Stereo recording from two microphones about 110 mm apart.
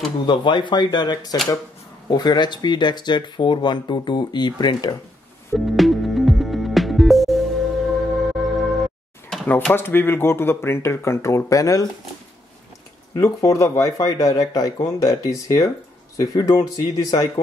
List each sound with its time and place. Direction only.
0.3 s speech: 45° left (ahead or behind)
5.5 s music: centre (ahead or behind)
9.5 s speech: 15° left (ahead or behind)
13.1 s speech: 30° left (ahead or behind)